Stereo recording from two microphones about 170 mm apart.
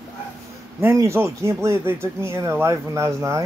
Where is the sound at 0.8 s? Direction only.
15° right (ahead or behind).